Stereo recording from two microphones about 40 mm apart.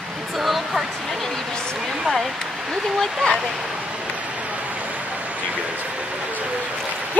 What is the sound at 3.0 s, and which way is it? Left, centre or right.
Speech, centre.